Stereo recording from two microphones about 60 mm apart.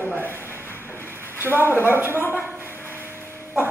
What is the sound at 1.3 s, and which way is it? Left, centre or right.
Speech, right.